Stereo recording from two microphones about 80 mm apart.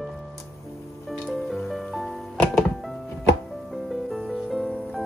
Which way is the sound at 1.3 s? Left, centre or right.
Centre.